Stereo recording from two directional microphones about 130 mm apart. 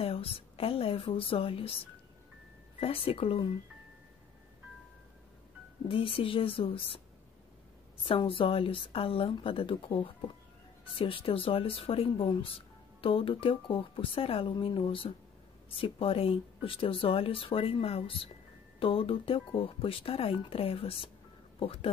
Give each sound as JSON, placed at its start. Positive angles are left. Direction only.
{"t": 0.0, "sound": "a woman's voice", "side_deg": 45}
{"t": 2.8, "sound": "speech", "side_deg": 45}
{"t": 5.9, "sound": "speech", "side_deg": 45}
{"t": 8.0, "sound": "speech", "side_deg": 45}